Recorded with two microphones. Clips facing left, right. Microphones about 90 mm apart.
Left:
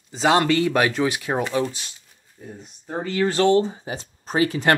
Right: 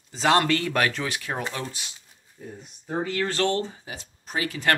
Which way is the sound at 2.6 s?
Centre (ahead or behind).